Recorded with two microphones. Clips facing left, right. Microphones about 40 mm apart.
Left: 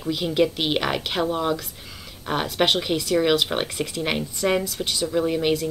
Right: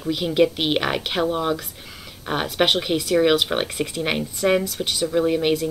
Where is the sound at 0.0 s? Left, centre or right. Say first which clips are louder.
Right 2 dB; centre.